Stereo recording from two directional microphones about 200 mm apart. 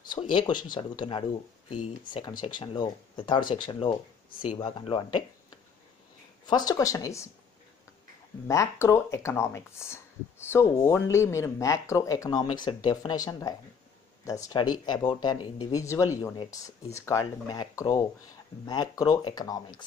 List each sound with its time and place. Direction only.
0.2 s speech: 25° left (ahead or behind)
2.4 s speech: 25° left (ahead or behind)
6.4 s speech: 20° left (ahead or behind)
8.5 s speech: 15° left (ahead or behind)